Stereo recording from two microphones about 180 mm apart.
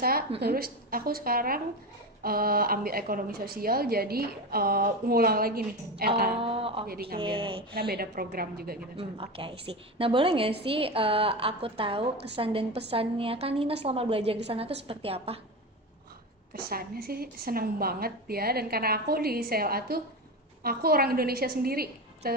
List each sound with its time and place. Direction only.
0.4 s a woman's voice: 60° right (ahead or behind)
6.4 s a woman's voice: 30° right (ahead or behind)
6.9 s a woman's voice: 55° right (ahead or behind)
7.2 s speech: 30° right (ahead or behind)
7.7 s a woman's voice: 60° right (ahead or behind)
8.9 s a woman's voice: 30° right (ahead or behind)
16.5 s a woman's voice: 55° right (ahead or behind)